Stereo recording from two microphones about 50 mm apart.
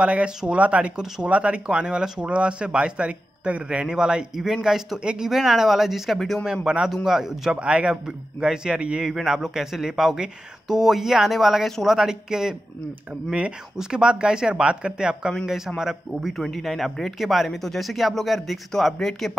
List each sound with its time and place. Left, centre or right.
0.0 s speech: right; by 6.4 s centre
6.4 s speech: centre
7.6 s speech: right
7.9 s speech: centre